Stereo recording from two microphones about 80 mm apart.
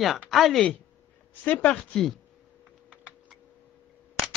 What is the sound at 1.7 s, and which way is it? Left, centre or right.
Speech, centre.